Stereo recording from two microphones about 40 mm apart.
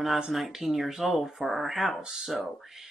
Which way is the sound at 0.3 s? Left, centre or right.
Centre.